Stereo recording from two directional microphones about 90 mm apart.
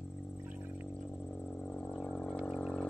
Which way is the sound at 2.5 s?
5° left (ahead or behind).